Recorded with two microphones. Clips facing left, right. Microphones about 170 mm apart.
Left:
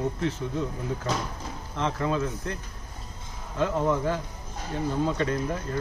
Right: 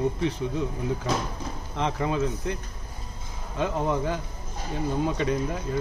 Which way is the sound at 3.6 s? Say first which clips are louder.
Left 1 dB; 15° right (ahead or behind).